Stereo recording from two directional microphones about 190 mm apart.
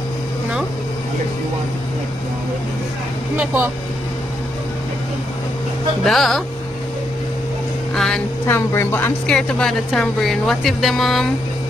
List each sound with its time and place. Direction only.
3.3 s speech: 10° right (ahead or behind)
6.0 s speech: centre (ahead or behind)
7.9 s a sound: 5° left (ahead or behind)
8.5 s speech: 10° left (ahead or behind)